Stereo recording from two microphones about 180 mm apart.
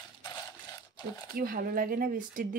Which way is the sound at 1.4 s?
55° right (ahead or behind).